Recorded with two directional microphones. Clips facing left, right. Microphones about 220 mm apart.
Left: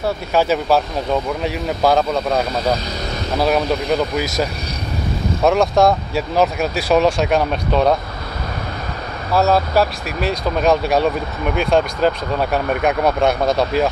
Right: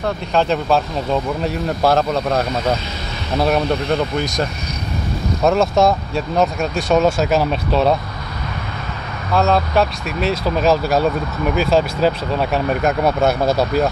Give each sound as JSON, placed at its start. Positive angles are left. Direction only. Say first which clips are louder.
{"t": 0.0, "sound": "speech", "louder": "left 1 dB", "side_deg": 5}
{"t": 9.3, "sound": "speech", "louder": "left 1 dB", "side_deg": 5}